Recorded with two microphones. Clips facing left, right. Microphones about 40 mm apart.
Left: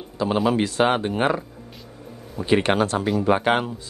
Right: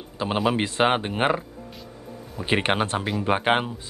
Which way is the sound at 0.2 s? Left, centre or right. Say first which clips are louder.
Left 3 dB; right.